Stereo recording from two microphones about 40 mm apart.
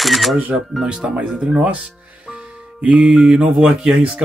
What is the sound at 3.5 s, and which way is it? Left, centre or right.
Speech, right.